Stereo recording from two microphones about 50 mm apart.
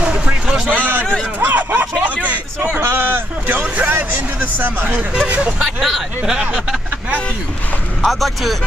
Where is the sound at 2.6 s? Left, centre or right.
Right.